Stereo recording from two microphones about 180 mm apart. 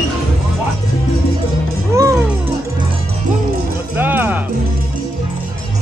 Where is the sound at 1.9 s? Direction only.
15° right (ahead or behind).